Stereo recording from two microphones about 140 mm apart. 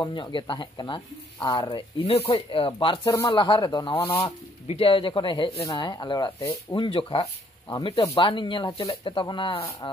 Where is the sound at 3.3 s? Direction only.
35° left (ahead or behind).